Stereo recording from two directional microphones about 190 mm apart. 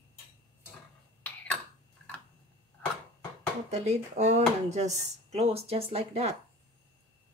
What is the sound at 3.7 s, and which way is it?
Speech, 35° right (ahead or behind).